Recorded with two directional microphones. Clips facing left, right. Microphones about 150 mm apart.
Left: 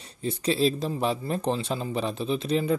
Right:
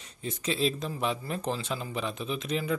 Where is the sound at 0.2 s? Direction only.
35° left (ahead or behind).